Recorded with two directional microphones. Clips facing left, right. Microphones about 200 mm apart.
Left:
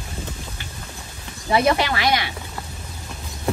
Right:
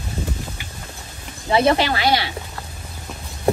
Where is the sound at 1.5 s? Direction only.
25° right (ahead or behind).